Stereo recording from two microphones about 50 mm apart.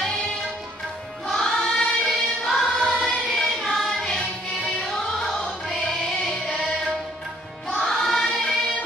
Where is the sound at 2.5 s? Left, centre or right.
Centre.